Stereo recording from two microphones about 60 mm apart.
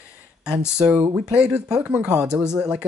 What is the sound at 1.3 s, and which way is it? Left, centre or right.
Speech, centre.